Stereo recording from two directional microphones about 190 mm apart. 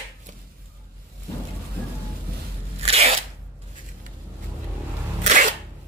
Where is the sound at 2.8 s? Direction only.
35° right (ahead or behind).